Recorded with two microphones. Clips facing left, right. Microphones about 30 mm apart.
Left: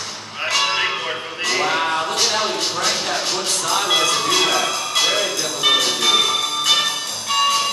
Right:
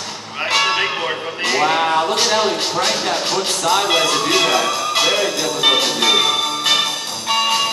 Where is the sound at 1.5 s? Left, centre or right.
Centre.